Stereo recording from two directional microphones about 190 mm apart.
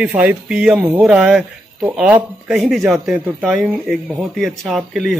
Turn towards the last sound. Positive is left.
turn(degrees=0)  # may be behind; listen again after turning